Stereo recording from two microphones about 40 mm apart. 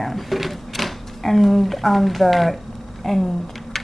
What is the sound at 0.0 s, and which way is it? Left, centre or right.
Speech, centre.